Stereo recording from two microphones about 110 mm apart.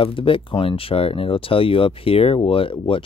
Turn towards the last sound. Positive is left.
turn(degrees=55)  # may be behind; listen again after turning